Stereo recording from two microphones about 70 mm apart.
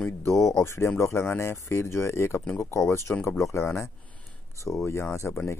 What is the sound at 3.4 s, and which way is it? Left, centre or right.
Speech, left.